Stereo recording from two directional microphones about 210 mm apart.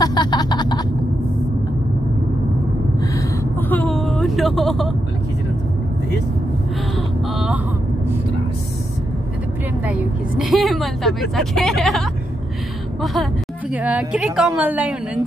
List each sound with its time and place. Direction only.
0.0 s snicker: 20° left (ahead or behind)
3.0 s vehicle: 10° left (ahead or behind)
7.0 s a sound: 5° right (ahead or behind)
9.8 s speech: 5° right (ahead or behind)